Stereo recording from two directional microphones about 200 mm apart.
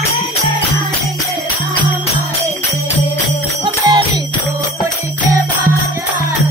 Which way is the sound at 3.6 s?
20° right (ahead or behind).